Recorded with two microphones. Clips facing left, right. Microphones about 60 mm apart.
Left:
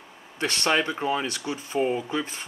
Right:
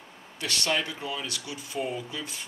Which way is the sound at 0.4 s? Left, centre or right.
Left.